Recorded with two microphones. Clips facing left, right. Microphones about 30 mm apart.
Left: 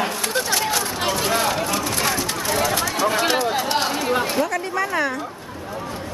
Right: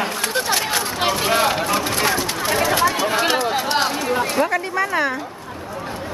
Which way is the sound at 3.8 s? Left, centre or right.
Centre.